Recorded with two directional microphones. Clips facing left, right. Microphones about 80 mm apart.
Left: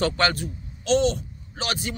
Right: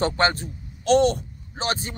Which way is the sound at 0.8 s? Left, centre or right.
Right.